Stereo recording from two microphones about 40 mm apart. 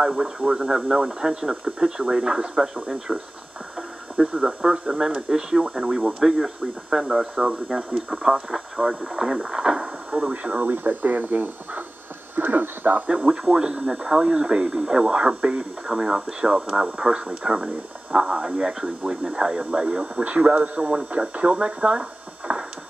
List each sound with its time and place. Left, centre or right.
0.0 s speech: centre
4.4 s speech: centre
10.3 s speech: right
10.6 s speech: right
12.4 s a sound: right
13.0 s speech: right
13.3 s speech: centre
15.9 s speech: centre
19.6 s speech: right
22.5 s a sound: right